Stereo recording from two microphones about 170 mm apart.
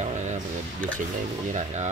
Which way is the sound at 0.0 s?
45° right (ahead or behind).